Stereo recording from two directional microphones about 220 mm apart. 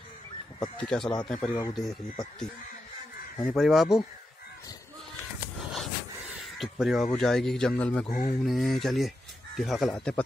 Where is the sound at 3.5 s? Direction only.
Centre (ahead or behind).